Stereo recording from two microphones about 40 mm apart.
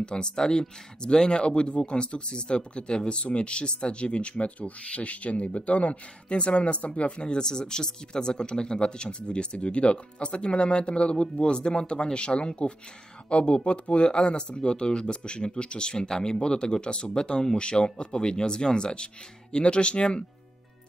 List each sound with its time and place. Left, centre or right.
0.0 s speech: left